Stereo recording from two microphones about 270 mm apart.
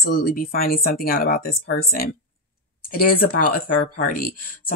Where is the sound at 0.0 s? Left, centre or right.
Left.